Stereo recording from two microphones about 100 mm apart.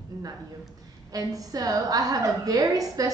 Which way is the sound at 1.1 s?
40° right (ahead or behind).